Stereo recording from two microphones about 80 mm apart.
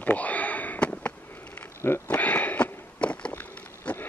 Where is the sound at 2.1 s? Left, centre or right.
Centre.